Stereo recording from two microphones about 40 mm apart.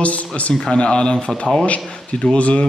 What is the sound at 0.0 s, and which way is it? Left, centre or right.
Speech, left.